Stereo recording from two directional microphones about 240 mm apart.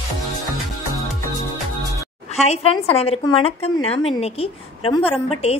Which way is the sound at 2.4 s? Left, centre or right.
Left.